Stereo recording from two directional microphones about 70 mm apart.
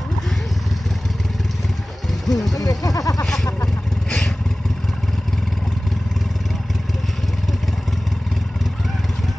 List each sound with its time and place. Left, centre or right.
2.0 s vehicle: centre
2.5 s speech: left